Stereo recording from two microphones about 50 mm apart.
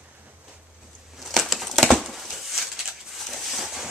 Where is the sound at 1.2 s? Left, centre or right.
Centre.